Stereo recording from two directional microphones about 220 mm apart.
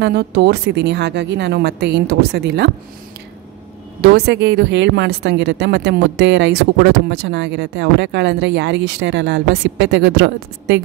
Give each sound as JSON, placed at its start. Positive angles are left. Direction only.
{"t": 0.0, "sound": "speech", "side_deg": -50}
{"t": 4.0, "sound": "speech", "side_deg": -50}